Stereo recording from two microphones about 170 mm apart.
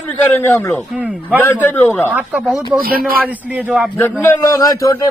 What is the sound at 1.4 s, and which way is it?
Speech, 10° left (ahead or behind).